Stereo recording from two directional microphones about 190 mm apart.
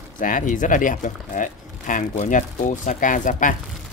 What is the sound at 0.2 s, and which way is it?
Speech, 45° left (ahead or behind).